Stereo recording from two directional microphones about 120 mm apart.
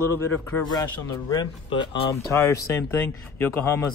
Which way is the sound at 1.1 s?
30° left (ahead or behind).